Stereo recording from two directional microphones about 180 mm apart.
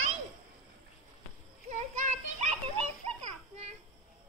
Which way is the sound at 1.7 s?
40° right (ahead or behind).